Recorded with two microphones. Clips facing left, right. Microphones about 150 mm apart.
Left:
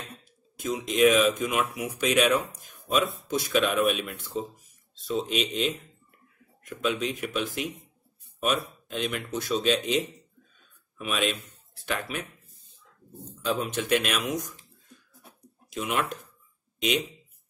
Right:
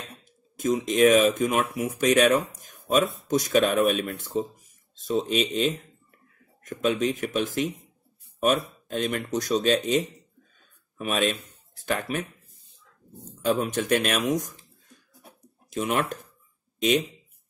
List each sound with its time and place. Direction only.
0.6 s speech: 45° right (ahead or behind)
13.4 s speech: 50° right (ahead or behind)
15.7 s speech: 45° right (ahead or behind)